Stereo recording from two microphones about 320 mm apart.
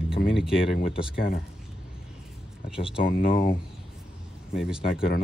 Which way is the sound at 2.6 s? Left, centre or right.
Centre.